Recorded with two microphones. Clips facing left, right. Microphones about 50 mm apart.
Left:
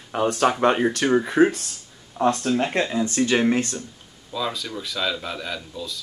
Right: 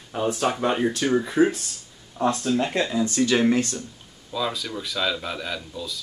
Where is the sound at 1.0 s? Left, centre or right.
Left.